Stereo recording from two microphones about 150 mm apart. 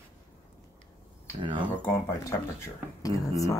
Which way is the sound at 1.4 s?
35° right (ahead or behind).